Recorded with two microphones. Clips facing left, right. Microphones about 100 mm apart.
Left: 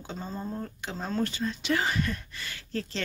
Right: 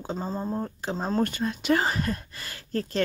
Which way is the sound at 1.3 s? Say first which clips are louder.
Right 4 dB; 50° right (ahead or behind).